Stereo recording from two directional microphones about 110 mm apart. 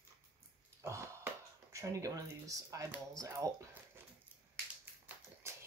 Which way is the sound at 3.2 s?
30° right (ahead or behind).